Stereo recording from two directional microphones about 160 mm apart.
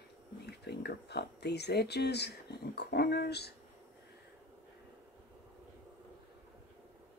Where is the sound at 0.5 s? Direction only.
90° left.